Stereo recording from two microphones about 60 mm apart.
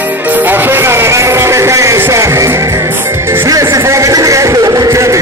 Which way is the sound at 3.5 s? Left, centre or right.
Right.